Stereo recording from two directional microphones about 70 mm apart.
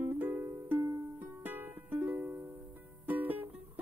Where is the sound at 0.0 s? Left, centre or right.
Right.